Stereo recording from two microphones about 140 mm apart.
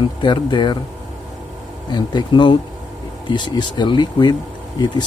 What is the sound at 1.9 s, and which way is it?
Speech, 30° left (ahead or behind).